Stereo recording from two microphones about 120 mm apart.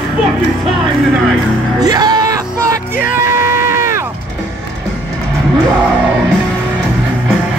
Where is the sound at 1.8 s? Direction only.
35° right (ahead or behind).